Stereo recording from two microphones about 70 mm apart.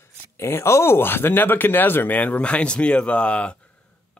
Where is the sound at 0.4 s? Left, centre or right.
Left.